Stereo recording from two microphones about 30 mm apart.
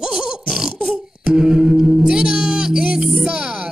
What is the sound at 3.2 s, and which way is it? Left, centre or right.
Music, right.